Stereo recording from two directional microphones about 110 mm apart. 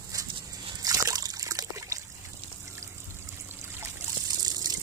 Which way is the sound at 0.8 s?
35° right (ahead or behind).